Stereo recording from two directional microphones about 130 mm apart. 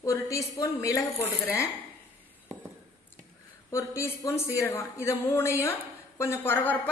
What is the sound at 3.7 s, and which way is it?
A woman's voice, 20° left (ahead or behind).